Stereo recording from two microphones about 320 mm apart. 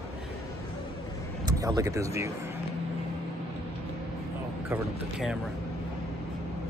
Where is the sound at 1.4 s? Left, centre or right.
Centre.